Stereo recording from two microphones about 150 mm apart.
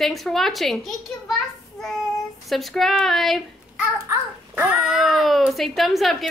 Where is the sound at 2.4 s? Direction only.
Centre (ahead or behind).